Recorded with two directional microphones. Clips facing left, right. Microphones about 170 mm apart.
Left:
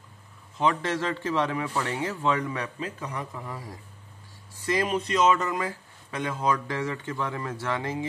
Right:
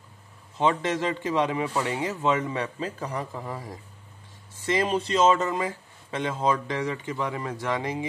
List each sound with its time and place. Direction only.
0.6 s speech: 20° right (ahead or behind)